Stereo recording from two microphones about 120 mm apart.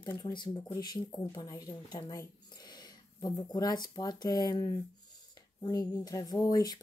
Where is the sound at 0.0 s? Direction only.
35° left (ahead or behind).